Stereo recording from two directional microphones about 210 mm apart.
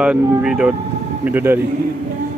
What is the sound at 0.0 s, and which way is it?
Speech, 5° right (ahead or behind).